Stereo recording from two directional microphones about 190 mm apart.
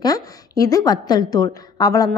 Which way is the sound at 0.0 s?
20° left (ahead or behind).